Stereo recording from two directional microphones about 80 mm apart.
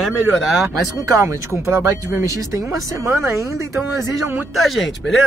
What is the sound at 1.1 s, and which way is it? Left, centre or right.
Speech, right.